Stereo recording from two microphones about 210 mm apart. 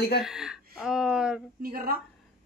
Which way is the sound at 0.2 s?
Centre (ahead or behind).